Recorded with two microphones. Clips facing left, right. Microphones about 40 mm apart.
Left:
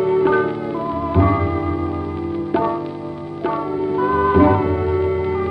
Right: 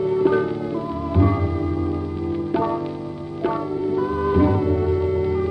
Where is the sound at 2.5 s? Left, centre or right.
Centre.